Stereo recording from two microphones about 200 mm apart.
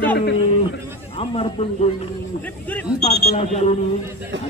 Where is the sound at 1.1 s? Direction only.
30° left (ahead or behind).